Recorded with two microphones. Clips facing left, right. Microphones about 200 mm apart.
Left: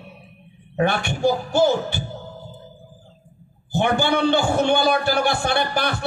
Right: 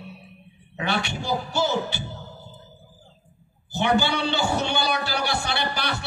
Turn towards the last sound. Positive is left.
turn(degrees=50)  # may be behind; listen again after turning